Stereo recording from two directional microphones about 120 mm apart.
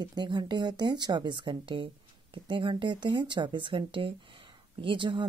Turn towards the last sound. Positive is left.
turn(degrees=-45)  # may be behind; listen again after turning